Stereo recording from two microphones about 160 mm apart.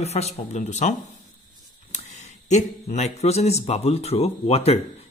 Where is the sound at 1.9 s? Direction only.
45° left (ahead or behind).